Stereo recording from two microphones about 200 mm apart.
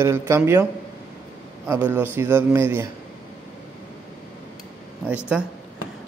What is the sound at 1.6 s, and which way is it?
Speech, 10° right (ahead or behind).